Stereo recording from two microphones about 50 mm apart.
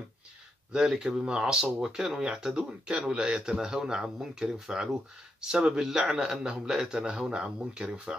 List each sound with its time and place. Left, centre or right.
0.7 s speech: centre
5.8 s speech: centre